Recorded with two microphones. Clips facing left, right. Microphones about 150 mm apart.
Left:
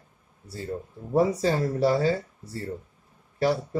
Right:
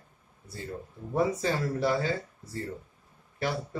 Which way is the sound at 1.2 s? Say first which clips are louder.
Left 5 dB; 40° left (ahead or behind).